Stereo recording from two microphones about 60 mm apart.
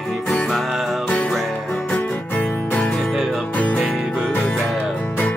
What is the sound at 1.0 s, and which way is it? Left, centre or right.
Music, left.